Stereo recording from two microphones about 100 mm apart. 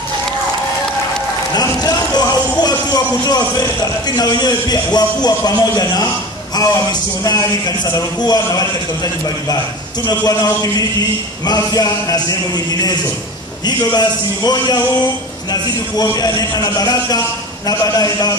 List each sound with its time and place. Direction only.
1.5 s a man's voice: 40° left (ahead or behind)